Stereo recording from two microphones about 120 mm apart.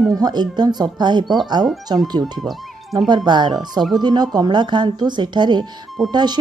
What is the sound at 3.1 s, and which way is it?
Speech, 40° right (ahead or behind).